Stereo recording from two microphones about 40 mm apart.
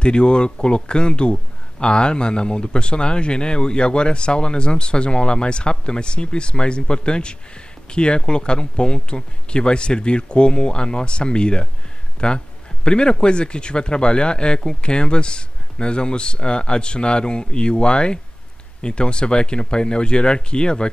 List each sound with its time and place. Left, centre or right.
0.0 s speech: left